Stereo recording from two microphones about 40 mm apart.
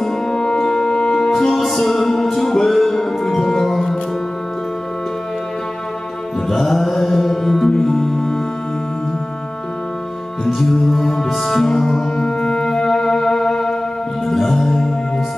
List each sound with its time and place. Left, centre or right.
0.0 s music: centre
1.3 s music: centre
6.5 s music: centre
10.4 s music: centre